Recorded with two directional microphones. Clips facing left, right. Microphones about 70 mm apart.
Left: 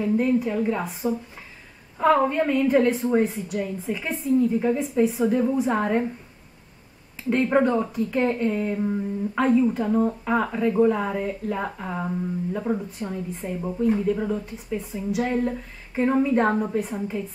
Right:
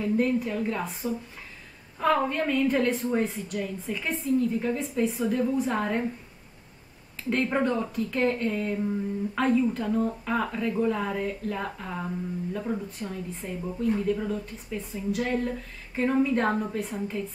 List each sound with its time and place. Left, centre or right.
0.0 s a woman's voice: centre
7.2 s a woman's voice: centre